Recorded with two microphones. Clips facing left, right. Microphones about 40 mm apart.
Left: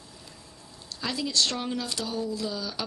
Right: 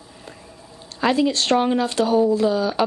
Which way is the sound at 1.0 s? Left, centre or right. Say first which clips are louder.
Right 10 dB; right.